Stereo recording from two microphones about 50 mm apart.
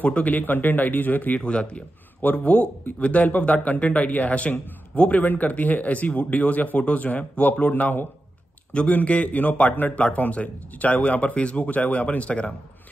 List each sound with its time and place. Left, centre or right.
0.0 s speech: left
2.2 s a man's voice: left
8.9 s a man's voice: left